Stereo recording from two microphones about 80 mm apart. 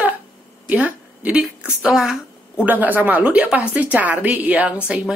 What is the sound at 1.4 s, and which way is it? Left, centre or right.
Speech, centre.